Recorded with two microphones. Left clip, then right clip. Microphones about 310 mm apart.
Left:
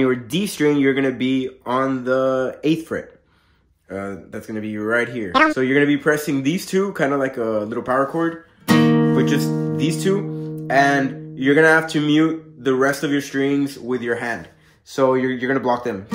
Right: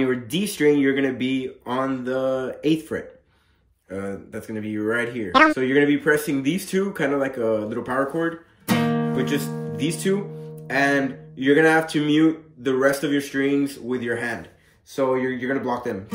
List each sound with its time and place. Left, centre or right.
0.0 s speech: centre
5.3 s speech: centre
5.6 s speech: centre
8.6 s music: left
9.1 s speech: centre